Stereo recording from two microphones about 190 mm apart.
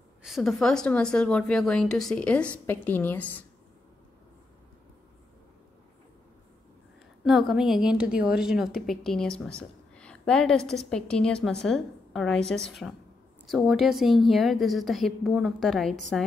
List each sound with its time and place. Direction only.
0.2 s a woman's voice: centre (ahead or behind)
7.2 s a woman's voice: centre (ahead or behind)
9.6 s a sound: 5° left (ahead or behind)
10.9 s a woman's voice: 5° left (ahead or behind)